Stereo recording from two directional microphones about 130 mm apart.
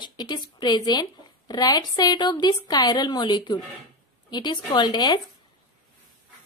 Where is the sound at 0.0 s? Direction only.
35° left (ahead or behind).